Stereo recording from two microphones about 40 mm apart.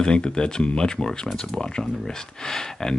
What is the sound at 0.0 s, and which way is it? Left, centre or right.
Speech, centre.